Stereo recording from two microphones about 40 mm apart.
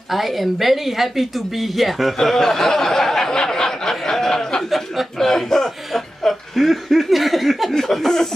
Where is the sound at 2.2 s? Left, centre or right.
Centre.